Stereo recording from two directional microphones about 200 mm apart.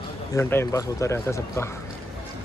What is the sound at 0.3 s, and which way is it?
A man's voice, 10° left (ahead or behind).